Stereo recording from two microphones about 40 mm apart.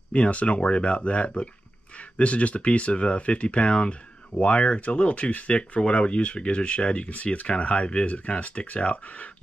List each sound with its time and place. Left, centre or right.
0.1 s speech: left